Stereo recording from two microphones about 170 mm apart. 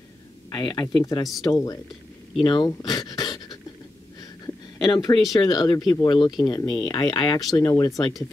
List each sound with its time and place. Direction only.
0.5 s speech: 25° left (ahead or behind)
4.7 s speech: 25° left (ahead or behind)